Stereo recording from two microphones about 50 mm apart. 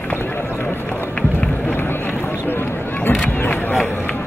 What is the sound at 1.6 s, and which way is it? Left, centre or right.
Run, left.